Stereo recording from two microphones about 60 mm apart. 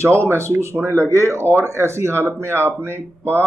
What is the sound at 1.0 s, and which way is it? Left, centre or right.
Speech, right.